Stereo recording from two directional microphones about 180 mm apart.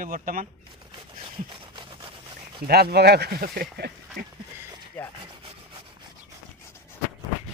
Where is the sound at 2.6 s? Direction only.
60° right (ahead or behind).